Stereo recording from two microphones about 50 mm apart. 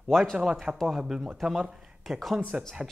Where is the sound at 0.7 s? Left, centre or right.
Centre.